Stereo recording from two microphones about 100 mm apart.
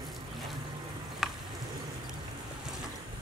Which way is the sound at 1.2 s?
5° right (ahead or behind).